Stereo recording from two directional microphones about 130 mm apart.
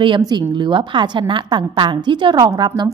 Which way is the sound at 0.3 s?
35° right (ahead or behind).